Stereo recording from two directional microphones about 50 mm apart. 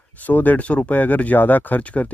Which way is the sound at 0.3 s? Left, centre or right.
Left.